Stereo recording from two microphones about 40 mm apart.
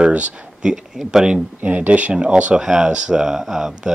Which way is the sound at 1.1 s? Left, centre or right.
Right.